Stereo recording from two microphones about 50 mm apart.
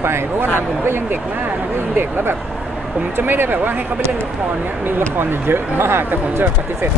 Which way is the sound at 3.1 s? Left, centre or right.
Right.